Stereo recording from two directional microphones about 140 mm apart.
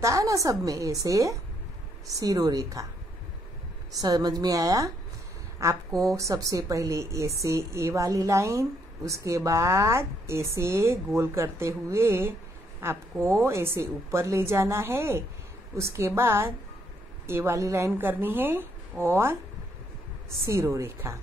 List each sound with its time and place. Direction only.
0.0 s a woman's voice: 25° right (ahead or behind)
4.0 s a woman's voice: 30° right (ahead or behind)
20.4 s a woman's voice: 20° right (ahead or behind)